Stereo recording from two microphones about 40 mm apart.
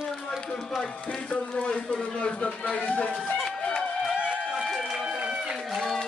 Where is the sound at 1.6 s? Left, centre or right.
Left.